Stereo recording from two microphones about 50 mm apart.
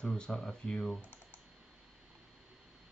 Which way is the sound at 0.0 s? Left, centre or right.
Centre.